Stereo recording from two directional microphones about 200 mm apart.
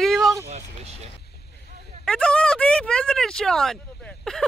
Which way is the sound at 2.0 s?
5° left (ahead or behind).